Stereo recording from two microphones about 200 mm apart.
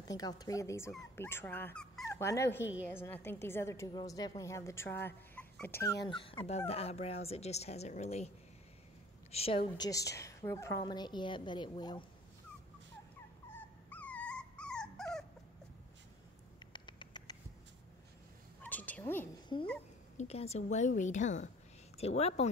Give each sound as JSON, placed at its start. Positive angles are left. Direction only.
{"t": 0.2, "sound": "a woman's voice", "side_deg": 20}
{"t": 6.0, "sound": "a woman's voice", "side_deg": 25}
{"t": 9.3, "sound": "a woman's voice", "side_deg": 30}
{"t": 9.8, "sound": "a woman's voice", "side_deg": 15}
{"t": 13.5, "sound": "dog", "side_deg": 10}
{"t": 16.7, "sound": "patter", "side_deg": 20}
{"t": 18.6, "sound": "cat", "side_deg": 10}
{"t": 19.5, "sound": "a woman's voice", "side_deg": 20}